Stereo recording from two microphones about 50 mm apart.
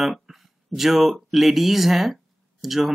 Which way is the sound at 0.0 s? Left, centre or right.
Centre.